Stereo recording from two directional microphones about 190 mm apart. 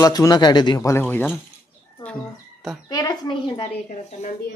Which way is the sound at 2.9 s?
20° left (ahead or behind).